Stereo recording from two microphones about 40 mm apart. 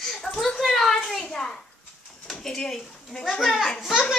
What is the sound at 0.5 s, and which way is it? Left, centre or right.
A child's voice, centre.